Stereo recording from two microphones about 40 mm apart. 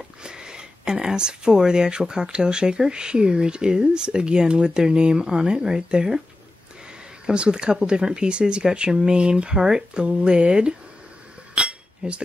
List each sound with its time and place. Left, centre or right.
0.2 s speech: centre
7.2 s speech: right
11.5 s cutlery: right